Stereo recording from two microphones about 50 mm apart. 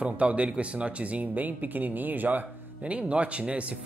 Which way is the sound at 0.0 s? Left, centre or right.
Right.